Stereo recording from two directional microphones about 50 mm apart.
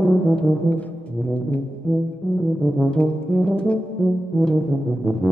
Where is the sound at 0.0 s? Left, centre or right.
Left.